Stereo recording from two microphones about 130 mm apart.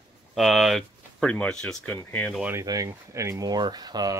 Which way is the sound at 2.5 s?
25° right (ahead or behind).